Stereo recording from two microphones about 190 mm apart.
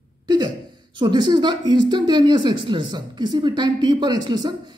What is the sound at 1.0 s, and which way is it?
Speech, 25° right (ahead or behind).